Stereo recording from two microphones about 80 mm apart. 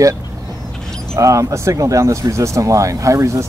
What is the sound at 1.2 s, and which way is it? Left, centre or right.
Speech, right.